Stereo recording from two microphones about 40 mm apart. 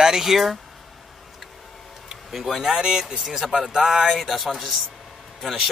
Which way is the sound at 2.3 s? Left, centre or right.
Centre.